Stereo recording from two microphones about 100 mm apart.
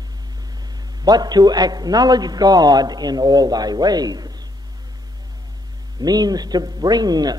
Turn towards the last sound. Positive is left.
turn(degrees=-40)  # may be behind; listen again after turning